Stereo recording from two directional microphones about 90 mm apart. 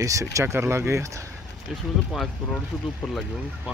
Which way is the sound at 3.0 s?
5° left (ahead or behind).